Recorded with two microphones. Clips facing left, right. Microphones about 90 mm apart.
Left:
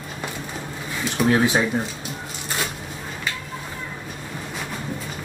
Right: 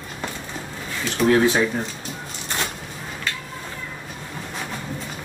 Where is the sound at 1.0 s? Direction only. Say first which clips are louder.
Right 2 dB; 15° left (ahead or behind).